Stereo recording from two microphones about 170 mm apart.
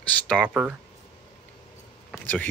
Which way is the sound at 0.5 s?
5° right (ahead or behind).